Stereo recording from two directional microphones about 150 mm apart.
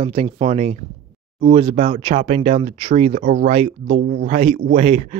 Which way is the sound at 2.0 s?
45° right (ahead or behind).